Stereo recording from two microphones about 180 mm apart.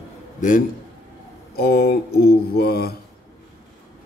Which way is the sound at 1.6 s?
60° left (ahead or behind).